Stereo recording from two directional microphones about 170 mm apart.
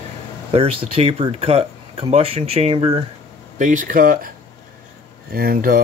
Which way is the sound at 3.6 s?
50° right (ahead or behind).